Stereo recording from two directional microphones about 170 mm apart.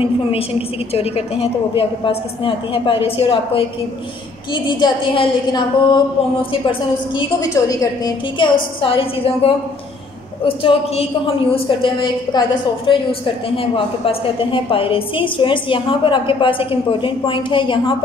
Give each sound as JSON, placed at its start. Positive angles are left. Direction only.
{"t": 0.0, "sound": "a woman's voice", "side_deg": 35}
{"t": 4.6, "sound": "a woman's voice", "side_deg": 25}
{"t": 7.2, "sound": "a woman's voice", "side_deg": 20}
{"t": 8.8, "sound": "a woman's voice", "side_deg": 35}